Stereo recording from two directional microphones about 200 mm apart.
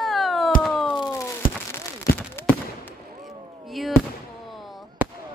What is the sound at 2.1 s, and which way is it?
Fireworks, 50° left (ahead or behind).